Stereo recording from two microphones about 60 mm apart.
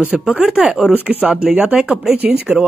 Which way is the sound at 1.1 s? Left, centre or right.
Right.